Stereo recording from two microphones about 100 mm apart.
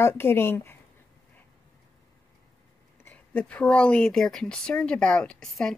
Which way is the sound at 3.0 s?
15° left (ahead or behind).